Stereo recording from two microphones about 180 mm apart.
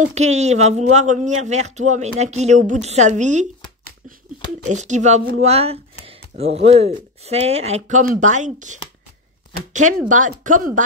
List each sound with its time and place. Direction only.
0.0 s speech: 40° right (ahead or behind)
10.0 s speech: 45° right (ahead or behind)